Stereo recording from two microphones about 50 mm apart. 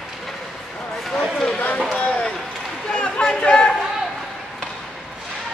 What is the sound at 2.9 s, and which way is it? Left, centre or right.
Chatter, centre.